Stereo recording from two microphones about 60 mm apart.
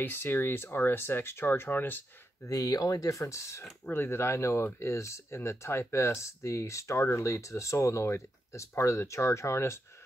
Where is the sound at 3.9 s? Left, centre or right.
Left.